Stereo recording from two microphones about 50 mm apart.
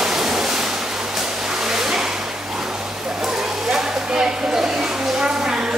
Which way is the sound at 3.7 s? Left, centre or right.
Centre.